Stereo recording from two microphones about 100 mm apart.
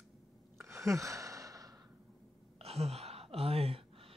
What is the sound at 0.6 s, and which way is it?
Sigh, 30° right (ahead or behind).